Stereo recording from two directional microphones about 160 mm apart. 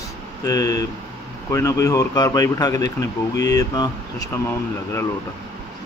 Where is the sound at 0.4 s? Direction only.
20° left (ahead or behind).